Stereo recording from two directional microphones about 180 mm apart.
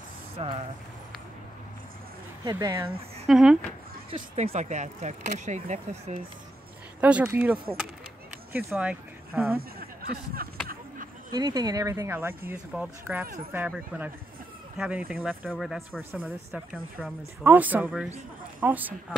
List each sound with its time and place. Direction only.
0.4 s speech: 35° right (ahead or behind)
2.4 s speech: 20° right (ahead or behind)
3.3 s speech: 5° right (ahead or behind)
4.1 s speech: 35° right (ahead or behind)
7.0 s a woman's voice: 10° right (ahead or behind)
9.6 s speech: 55° right (ahead or behind)
11.3 s a woman's voice: 20° right (ahead or behind)